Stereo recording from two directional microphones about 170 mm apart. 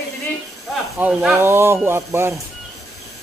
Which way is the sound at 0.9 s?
5° right (ahead or behind).